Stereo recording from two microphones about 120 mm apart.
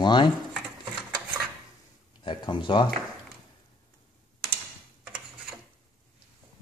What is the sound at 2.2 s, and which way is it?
Speech, 40° left (ahead or behind).